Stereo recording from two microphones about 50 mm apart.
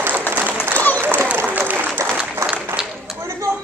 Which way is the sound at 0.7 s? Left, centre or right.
Left.